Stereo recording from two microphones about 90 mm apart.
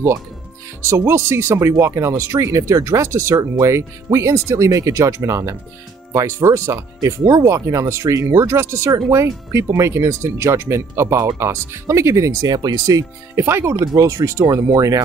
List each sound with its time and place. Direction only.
0.8 s speech: 30° right (ahead or behind)
13.7 s speech: 40° right (ahead or behind)